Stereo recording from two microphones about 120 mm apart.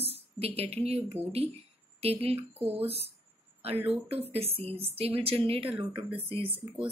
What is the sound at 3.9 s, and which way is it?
Speech, 55° right (ahead or behind).